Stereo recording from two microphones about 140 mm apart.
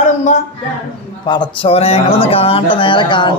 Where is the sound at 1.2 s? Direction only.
30° left (ahead or behind).